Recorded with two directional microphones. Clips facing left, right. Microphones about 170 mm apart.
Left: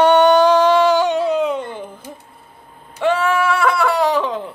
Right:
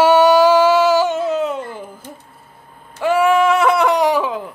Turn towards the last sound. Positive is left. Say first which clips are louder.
# right 1 dB
turn(degrees=-10)  # may be behind; listen again after turning